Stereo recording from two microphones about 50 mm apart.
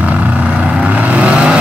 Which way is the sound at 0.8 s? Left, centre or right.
Right.